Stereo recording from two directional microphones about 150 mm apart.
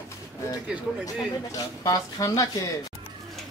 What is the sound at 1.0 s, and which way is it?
Speech, 20° left (ahead or behind).